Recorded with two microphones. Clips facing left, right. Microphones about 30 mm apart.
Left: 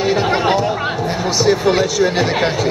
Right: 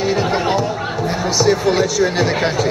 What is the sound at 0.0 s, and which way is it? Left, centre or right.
Chatter, centre.